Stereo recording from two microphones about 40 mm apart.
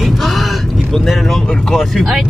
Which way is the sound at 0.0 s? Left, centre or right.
Centre.